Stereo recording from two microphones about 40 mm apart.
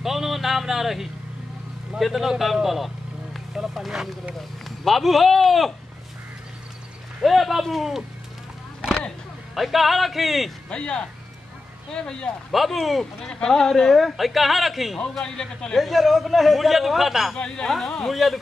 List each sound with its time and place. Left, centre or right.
0.0 s music: centre
2.0 s a man's voice: centre
4.6 s a man's voice: centre
7.2 s a man's voice: centre
9.6 s a man's voice: centre
10.7 s speech: left
12.5 s a man's voice: centre
13.0 s speech: centre
13.9 s a man's voice: centre
17.8 s speech: centre
18.1 s a man's voice: centre